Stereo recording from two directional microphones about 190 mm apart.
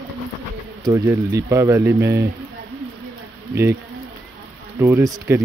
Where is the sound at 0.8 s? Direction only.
20° right (ahead or behind).